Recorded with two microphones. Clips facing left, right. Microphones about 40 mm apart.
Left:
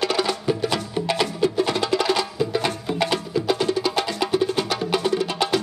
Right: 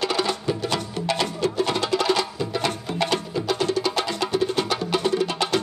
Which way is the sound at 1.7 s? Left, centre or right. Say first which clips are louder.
Left 1 dB; centre.